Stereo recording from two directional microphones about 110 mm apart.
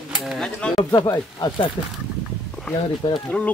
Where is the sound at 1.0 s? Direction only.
30° left (ahead or behind).